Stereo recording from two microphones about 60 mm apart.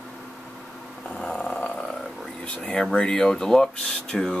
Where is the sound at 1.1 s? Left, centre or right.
Centre.